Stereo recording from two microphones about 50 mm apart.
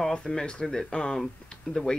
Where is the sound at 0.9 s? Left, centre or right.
Centre.